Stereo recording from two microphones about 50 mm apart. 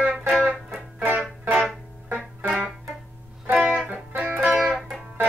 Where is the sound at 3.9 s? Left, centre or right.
Right.